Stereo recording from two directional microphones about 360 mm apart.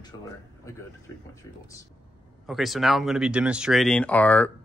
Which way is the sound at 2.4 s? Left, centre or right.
Centre.